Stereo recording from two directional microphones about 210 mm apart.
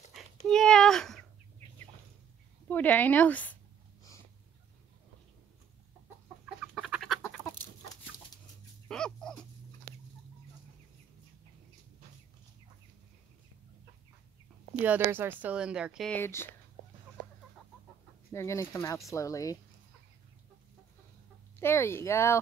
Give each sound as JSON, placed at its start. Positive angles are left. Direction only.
{"t": 0.5, "sound": "a sound", "side_deg": 0}
{"t": 2.7, "sound": "speech", "side_deg": 10}
{"t": 6.4, "sound": "chicken", "side_deg": -5}
{"t": 8.8, "sound": "fowl", "side_deg": 5}
{"t": 14.8, "sound": "speech", "side_deg": -10}
{"t": 18.3, "sound": "speech", "side_deg": 15}
{"t": 21.5, "sound": "speech", "side_deg": 10}